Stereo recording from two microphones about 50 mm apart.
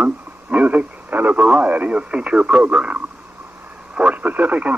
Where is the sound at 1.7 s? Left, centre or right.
Right.